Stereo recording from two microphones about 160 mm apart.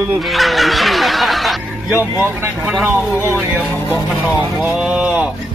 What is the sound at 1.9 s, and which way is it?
Speech, 15° right (ahead or behind).